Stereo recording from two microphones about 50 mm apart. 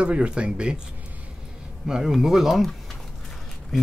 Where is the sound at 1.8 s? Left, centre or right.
Centre.